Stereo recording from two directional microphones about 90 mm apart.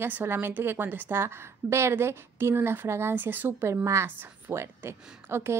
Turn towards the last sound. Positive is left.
turn(degrees=-30)  # may be behind; listen again after turning